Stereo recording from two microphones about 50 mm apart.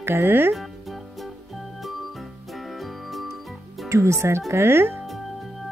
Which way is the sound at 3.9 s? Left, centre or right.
Right.